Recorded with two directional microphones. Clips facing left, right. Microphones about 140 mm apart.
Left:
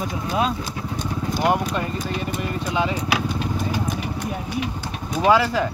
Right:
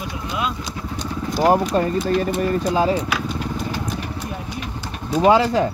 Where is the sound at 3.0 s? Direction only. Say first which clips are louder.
Left 1 dB; 20° left (ahead or behind).